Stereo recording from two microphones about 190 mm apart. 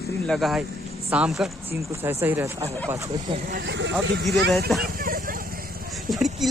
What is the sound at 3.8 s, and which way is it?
Speech, 70° right (ahead or behind).